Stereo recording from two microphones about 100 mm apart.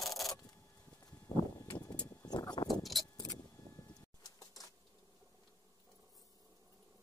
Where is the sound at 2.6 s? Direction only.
Centre (ahead or behind).